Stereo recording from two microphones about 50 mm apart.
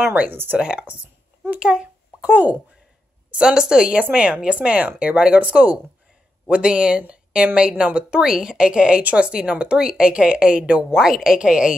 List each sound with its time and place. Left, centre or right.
0.1 s speech: right
0.6 s a woman's voice: centre
1.6 s a sound: centre
3.3 s a woman's voice: centre
6.5 s a woman's voice: centre
7.0 s a woman's voice: right